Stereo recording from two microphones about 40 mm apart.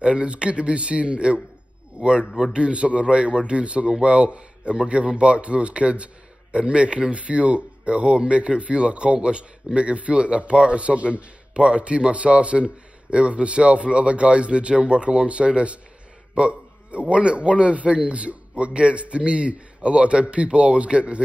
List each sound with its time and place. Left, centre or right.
0.0 s a man's voice: right